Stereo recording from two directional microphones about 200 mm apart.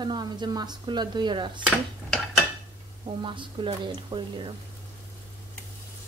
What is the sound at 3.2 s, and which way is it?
Speech, 25° right (ahead or behind).